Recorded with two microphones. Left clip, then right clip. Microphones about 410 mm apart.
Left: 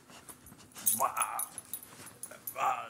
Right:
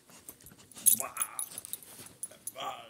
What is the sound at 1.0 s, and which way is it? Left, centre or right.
Dog, right.